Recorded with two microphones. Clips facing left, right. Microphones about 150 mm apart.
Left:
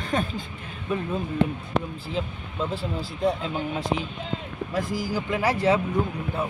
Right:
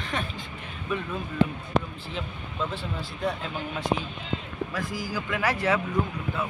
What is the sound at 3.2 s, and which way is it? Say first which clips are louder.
Speech: left 5 dB; 30° left (ahead or behind).